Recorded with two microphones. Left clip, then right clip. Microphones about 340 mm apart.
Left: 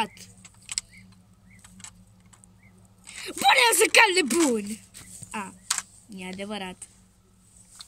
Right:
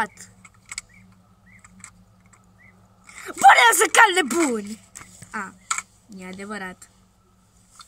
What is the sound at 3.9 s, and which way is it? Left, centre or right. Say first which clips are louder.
A woman's voice: right 3 dB; centre.